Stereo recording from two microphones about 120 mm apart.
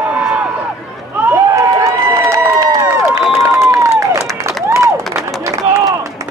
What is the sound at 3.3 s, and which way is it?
Crowd, 25° right (ahead or behind).